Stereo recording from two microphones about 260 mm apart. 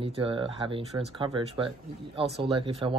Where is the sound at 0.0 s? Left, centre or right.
Centre.